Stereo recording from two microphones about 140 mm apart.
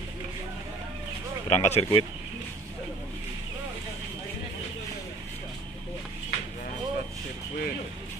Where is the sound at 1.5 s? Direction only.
50° left (ahead or behind).